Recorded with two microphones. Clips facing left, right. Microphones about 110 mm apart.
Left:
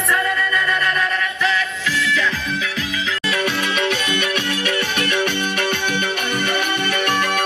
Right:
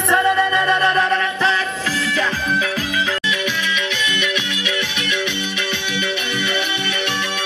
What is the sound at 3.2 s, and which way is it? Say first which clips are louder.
Music: left 1 dB; 40° left (ahead or behind).